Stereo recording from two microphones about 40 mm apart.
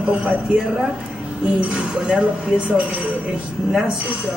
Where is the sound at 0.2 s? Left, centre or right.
Right.